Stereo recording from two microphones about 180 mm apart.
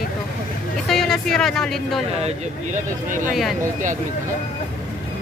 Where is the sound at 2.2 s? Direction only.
45° right (ahead or behind).